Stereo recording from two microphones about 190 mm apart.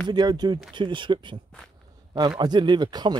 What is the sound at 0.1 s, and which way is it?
Speech, 20° right (ahead or behind).